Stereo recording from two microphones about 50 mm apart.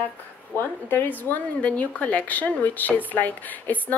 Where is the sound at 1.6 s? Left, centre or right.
Left.